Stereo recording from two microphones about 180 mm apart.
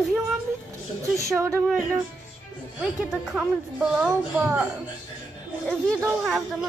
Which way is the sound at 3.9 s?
10° right (ahead or behind).